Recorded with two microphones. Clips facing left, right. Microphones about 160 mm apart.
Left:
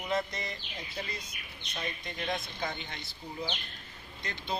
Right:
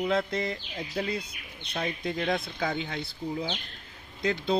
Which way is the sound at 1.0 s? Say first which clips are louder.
Right 10 dB; 70° right (ahead or behind).